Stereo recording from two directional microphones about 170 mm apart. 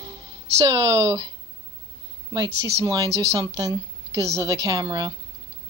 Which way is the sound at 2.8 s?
20° right (ahead or behind).